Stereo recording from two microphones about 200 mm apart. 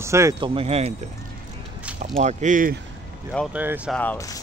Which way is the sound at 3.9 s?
10° left (ahead or behind).